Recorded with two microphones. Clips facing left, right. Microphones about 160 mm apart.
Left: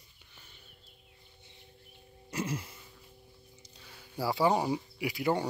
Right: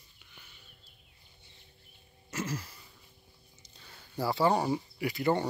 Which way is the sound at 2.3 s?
30° left (ahead or behind).